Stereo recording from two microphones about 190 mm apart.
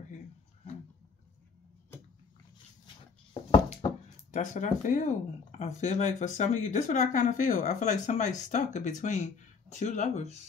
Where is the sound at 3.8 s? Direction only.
25° left (ahead or behind).